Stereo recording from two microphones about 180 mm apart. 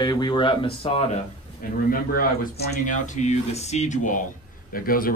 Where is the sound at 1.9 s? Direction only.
55° left (ahead or behind).